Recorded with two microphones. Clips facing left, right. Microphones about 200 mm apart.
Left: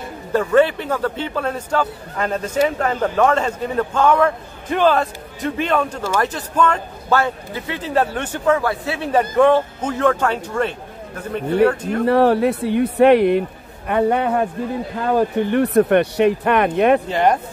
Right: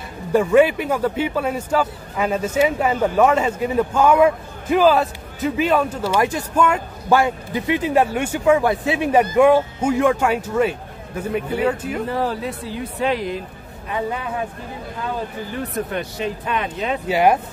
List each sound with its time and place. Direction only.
0.3 s a man's voice: 10° right (ahead or behind)
12.1 s a man's voice: 70° left (ahead or behind)
17.1 s a man's voice: 10° right (ahead or behind)